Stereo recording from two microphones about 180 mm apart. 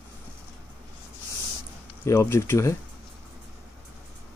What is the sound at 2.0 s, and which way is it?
Speech, 15° left (ahead or behind).